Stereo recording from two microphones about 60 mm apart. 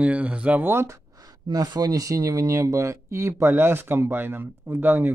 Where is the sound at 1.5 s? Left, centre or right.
Right.